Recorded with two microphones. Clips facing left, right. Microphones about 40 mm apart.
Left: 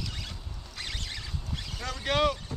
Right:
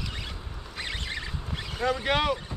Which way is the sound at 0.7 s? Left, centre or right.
Right.